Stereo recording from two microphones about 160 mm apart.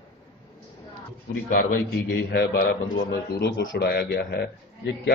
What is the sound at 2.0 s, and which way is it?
A man's voice, 75° left (ahead or behind).